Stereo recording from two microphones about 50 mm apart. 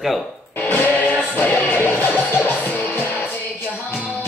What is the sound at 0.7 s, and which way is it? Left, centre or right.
Music, left.